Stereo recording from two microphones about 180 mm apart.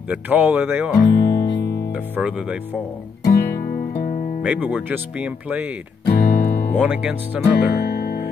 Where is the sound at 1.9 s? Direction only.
10° right (ahead or behind).